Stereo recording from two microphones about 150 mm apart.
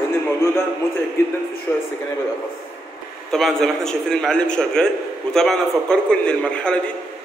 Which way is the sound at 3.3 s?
Centre (ahead or behind).